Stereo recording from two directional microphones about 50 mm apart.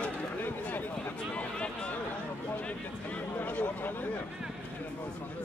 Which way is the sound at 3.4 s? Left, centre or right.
Left.